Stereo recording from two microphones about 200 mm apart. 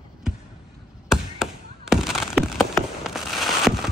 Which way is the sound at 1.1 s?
5° right (ahead or behind).